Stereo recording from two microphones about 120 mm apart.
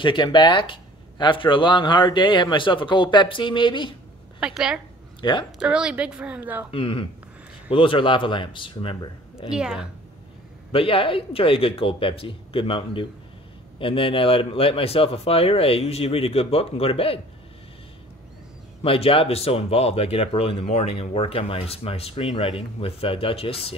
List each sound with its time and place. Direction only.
0.0 s speech: 40° left (ahead or behind)
4.4 s a woman's voice: 5° right (ahead or behind)
5.2 s speech: 45° left (ahead or behind)
5.6 s a woman's voice: 10° right (ahead or behind)
6.7 s speech: 45° left (ahead or behind)
9.5 s a woman's voice: 5° right (ahead or behind)
10.7 s speech: 50° left (ahead or behind)
18.8 s speech: 55° left (ahead or behind)